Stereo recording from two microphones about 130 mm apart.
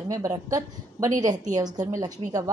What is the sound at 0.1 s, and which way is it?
A woman's voice, 30° right (ahead or behind).